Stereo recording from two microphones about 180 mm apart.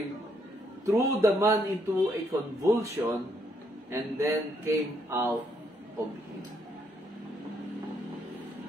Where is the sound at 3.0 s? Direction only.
15° right (ahead or behind).